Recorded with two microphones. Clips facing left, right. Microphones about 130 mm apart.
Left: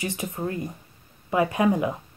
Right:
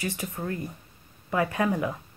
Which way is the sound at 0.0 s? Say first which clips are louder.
Left 3 dB; 20° left (ahead or behind).